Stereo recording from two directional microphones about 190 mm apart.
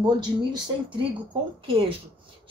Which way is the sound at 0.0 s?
25° right (ahead or behind).